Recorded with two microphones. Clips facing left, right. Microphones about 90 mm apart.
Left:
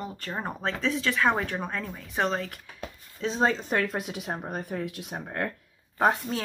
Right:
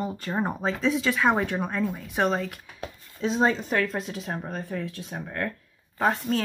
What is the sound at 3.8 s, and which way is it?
Speech, 10° left (ahead or behind).